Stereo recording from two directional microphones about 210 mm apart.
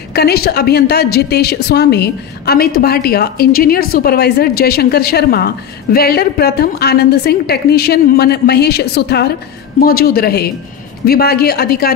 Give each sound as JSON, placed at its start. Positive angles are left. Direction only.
{"t": 0.1, "sound": "a woman's voice", "side_deg": 50}